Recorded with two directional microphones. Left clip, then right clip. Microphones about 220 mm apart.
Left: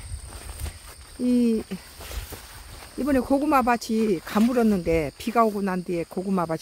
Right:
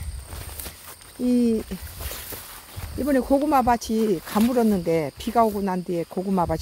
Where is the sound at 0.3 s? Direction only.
50° right (ahead or behind).